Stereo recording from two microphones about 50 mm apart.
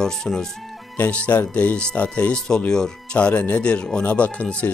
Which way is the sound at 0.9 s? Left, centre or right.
Left.